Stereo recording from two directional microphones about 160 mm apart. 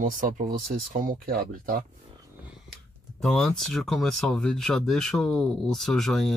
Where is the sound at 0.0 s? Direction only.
55° right (ahead or behind).